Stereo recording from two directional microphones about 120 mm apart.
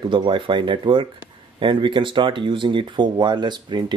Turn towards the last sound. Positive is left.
turn(degrees=-40)  # may be behind; listen again after turning